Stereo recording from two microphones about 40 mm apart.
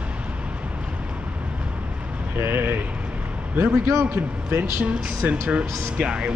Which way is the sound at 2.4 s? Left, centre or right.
Right.